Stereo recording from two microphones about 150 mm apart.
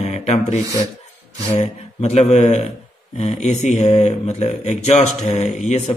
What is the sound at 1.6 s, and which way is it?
A man's voice, 45° left (ahead or behind).